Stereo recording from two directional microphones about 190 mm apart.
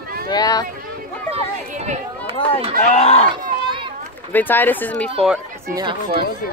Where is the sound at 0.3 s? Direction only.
20° left (ahead or behind).